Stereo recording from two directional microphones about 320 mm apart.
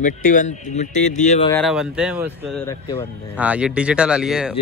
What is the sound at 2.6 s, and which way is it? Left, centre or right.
Speech, centre.